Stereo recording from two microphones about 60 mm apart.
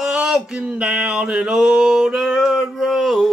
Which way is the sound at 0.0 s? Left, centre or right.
Centre.